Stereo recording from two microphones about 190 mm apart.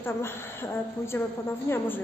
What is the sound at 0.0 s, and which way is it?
A woman's voice, 15° left (ahead or behind).